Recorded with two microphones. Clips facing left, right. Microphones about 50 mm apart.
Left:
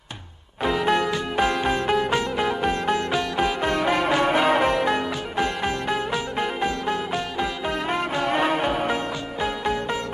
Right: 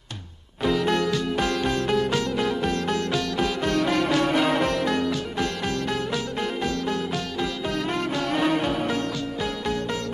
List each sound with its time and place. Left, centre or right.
0.7 s music: centre